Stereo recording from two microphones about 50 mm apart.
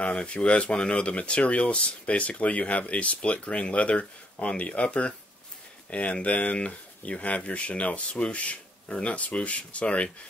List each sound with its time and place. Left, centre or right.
0.0 s speech: left